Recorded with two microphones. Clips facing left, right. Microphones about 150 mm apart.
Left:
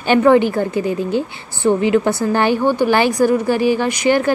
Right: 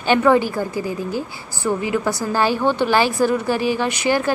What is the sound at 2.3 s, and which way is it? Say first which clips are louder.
Speech: left 1 dB; 55° left (ahead or behind).